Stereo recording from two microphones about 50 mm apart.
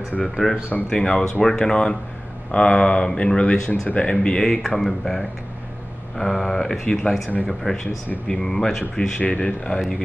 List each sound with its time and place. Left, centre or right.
0.2 s speech: centre
0.8 s speech: centre
4.5 s speech: centre
6.9 s speech: left
7.4 s speech: centre
9.2 s speech: left
9.8 s speech: centre